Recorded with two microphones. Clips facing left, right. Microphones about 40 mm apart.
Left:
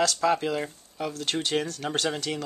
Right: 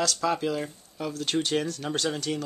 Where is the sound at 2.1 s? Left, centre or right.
Left.